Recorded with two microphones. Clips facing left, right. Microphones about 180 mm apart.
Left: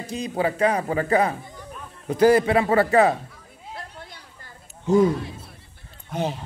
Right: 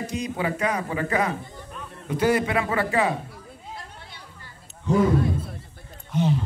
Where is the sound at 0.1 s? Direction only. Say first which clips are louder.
Left 6 dB; 30° left (ahead or behind).